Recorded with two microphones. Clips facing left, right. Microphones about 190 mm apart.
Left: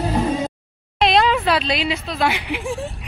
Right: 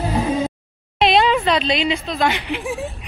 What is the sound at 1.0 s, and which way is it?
Speech, centre (ahead or behind).